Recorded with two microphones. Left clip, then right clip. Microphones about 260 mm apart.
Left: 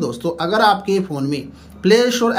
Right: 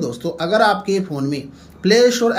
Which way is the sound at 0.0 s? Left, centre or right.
Centre.